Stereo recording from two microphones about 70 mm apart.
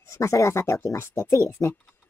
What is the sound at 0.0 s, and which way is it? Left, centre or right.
Speech, left.